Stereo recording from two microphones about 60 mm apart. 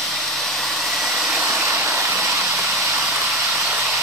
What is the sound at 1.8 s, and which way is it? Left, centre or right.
Hair dryer, right.